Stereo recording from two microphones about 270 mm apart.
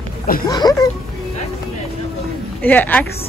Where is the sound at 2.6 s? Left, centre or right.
Centre.